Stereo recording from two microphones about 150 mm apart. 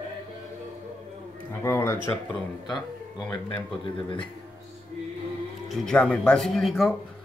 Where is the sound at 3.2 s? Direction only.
10° left (ahead or behind).